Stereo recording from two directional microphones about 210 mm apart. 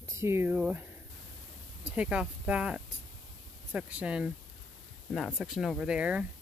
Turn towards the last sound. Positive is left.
turn(degrees=-5)  # may be behind; listen again after turning